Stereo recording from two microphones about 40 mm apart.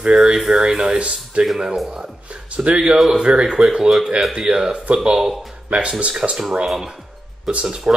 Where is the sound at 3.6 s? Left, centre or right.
Centre.